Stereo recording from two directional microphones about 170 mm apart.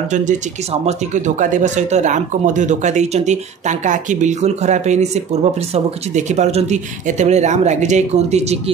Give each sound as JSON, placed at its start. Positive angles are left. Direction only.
{"t": 0.1, "sound": "speech", "side_deg": -45}